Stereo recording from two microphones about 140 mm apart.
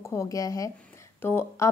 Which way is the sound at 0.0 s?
20° left (ahead or behind).